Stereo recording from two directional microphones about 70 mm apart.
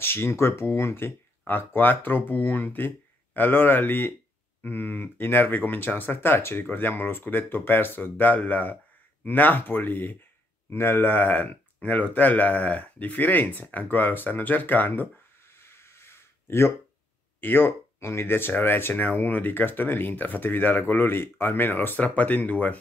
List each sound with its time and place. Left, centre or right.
0.0 s speech: left
15.6 s a sound: left
17.4 s speech: left